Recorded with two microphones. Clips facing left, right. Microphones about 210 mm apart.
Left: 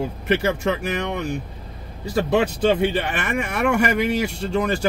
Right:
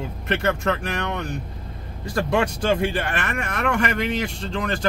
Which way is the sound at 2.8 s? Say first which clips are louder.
Left 2 dB; 10° left (ahead or behind).